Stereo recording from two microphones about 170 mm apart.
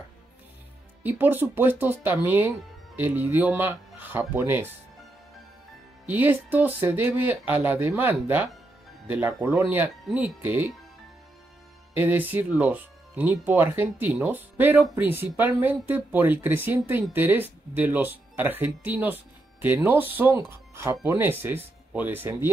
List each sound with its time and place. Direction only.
1.0 s speech: 10° right (ahead or behind)
6.0 s speech: 10° right (ahead or behind)
11.9 s speech: 10° right (ahead or behind)